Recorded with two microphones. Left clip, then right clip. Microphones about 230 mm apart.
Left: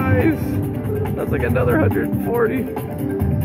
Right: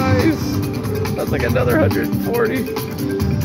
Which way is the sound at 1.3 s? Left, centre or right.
Centre.